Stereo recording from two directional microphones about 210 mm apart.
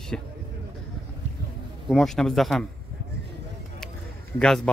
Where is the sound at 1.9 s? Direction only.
Centre (ahead or behind).